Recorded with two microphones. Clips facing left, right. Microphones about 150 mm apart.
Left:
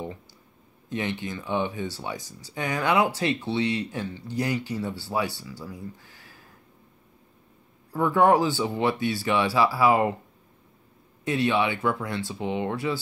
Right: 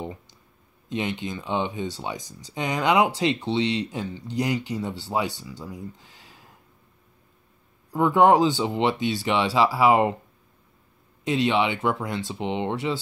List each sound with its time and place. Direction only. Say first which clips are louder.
0.8 s speech: right 1 dB; 20° right (ahead or behind)
7.9 s speech: right 2 dB; 20° right (ahead or behind)
11.2 s speech: right 1 dB; 20° right (ahead or behind)